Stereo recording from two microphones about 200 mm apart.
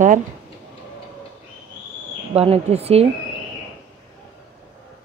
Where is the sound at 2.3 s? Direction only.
30° right (ahead or behind).